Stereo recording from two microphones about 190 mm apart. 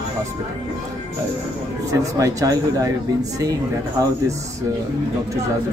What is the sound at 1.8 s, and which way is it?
A man's voice, 15° right (ahead or behind).